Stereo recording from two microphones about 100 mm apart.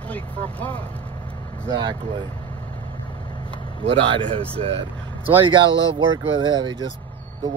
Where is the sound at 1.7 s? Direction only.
50° right (ahead or behind).